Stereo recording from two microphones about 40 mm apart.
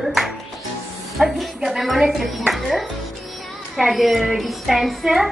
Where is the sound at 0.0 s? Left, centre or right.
Centre.